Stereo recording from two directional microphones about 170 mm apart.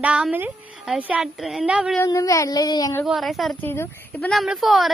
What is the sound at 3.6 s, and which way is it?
Speech, 15° left (ahead or behind).